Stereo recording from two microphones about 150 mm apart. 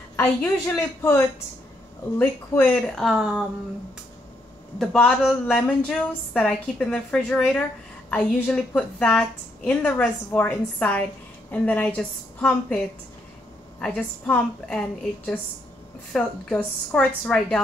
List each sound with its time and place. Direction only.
0.1 s a woman's voice: 10° left (ahead or behind); by 3.4 s 5° right (ahead or behind)
4.7 s a woman's voice: 5° left (ahead or behind)